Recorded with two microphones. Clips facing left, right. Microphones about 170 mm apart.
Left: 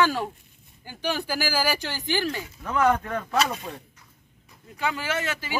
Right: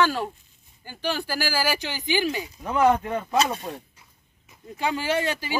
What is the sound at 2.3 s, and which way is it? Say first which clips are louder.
Speech: right 2 dB; 15° right (ahead or behind).